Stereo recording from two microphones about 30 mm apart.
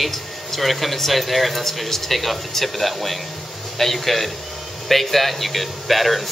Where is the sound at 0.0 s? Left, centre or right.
Centre.